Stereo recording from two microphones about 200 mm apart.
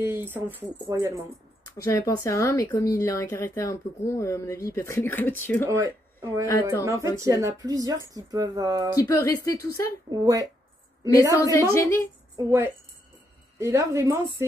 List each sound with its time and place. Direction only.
0.0 s speech: 10° right (ahead or behind)
1.8 s speech: 15° left (ahead or behind)
5.7 s speech: 15° right (ahead or behind)
8.9 s speech: 15° left (ahead or behind)
10.2 s speech: 15° right (ahead or behind)
11.5 s speech: 15° left (ahead or behind)
12.4 s speech: 10° right (ahead or behind)